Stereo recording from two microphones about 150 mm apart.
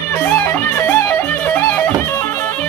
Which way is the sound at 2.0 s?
15° left (ahead or behind).